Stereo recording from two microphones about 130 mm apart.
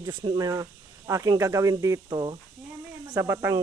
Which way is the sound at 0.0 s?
35° right (ahead or behind).